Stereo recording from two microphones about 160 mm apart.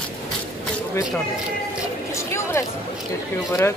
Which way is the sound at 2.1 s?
15° left (ahead or behind).